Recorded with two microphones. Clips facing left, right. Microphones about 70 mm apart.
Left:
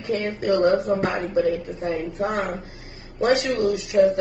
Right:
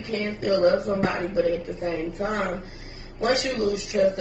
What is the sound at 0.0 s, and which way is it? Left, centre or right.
A woman's voice, left.